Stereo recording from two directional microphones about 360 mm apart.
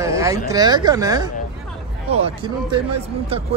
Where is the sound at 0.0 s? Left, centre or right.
Centre.